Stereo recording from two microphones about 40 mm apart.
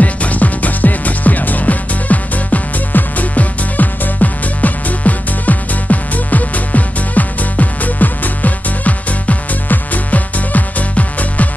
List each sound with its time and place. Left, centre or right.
0.0 s music: left